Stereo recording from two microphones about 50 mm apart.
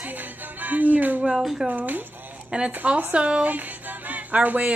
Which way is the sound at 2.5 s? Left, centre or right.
Right.